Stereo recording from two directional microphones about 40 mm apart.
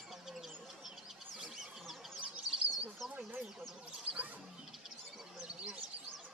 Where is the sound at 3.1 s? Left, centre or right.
Right.